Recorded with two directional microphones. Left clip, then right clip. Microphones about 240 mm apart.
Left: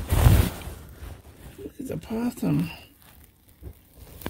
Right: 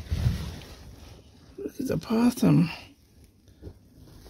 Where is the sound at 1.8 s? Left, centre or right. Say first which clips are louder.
Right 5 dB; right.